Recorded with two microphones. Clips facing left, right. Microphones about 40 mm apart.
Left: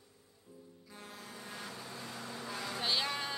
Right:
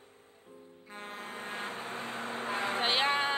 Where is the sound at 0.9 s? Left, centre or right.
Right.